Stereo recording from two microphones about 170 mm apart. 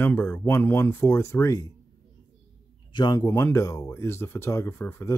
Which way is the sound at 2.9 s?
25° left (ahead or behind).